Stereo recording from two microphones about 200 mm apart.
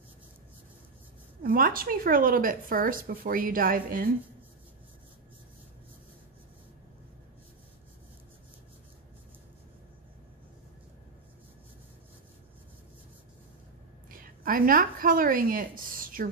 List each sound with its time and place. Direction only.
1.4 s a woman's voice: 45° right (ahead or behind)
14.4 s a woman's voice: 45° right (ahead or behind)